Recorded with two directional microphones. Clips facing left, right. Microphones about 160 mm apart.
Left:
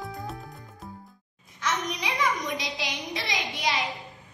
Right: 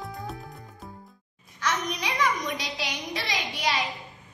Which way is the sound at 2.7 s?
15° left (ahead or behind).